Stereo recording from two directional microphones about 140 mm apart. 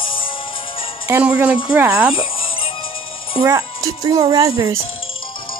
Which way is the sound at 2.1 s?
40° left (ahead or behind).